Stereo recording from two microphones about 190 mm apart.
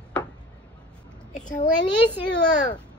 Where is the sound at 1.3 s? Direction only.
40° left (ahead or behind).